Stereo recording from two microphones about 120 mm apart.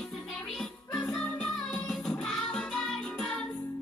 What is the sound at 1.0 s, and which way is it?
Music, 10° left (ahead or behind).